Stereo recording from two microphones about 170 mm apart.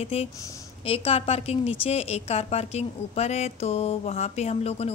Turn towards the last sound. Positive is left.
turn(degrees=40)  # may be behind; listen again after turning